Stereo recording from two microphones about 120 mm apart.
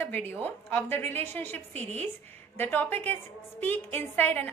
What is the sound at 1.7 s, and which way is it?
Speech, 65° right (ahead or behind).